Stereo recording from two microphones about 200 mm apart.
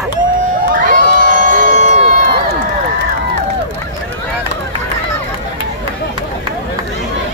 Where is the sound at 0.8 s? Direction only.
45° right (ahead or behind).